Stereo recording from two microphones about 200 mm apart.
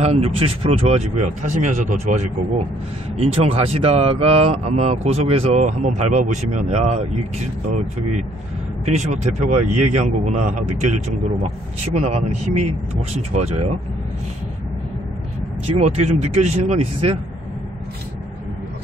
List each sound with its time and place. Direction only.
0.0 s speech: 30° right (ahead or behind)
3.2 s speech: 30° right (ahead or behind)
8.8 s speech: 35° right (ahead or behind)
12.0 s speech: 35° right (ahead or behind)
15.8 s speech: 35° right (ahead or behind)